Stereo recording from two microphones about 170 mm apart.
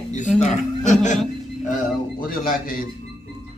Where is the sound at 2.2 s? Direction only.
55° left (ahead or behind).